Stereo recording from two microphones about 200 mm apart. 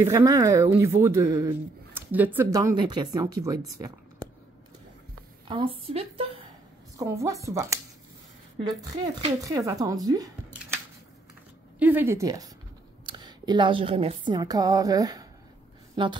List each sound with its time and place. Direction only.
0.0 s speech: 15° right (ahead or behind)
5.5 s a woman's voice: 25° right (ahead or behind)
7.0 s speech: 15° right (ahead or behind)
11.8 s speech: 10° right (ahead or behind)